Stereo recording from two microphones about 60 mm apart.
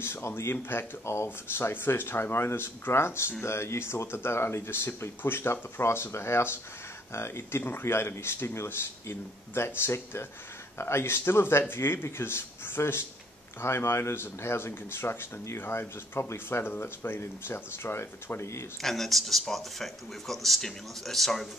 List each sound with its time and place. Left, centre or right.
0.0 s speech: left
18.8 s speech: centre